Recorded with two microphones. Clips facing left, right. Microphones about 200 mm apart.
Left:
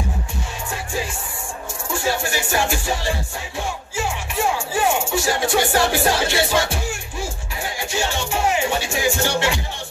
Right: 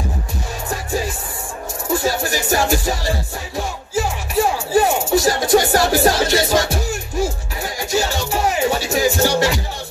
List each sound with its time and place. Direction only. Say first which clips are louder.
1.9 s music: right 4 dB; 40° right (ahead or behind)